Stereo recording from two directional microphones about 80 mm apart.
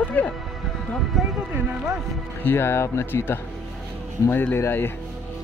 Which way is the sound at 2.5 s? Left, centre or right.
Left.